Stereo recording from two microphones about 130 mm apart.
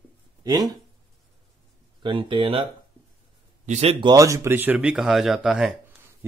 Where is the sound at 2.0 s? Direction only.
40° right (ahead or behind).